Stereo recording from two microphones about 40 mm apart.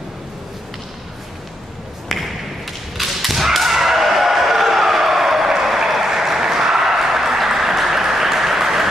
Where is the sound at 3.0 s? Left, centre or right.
Centre.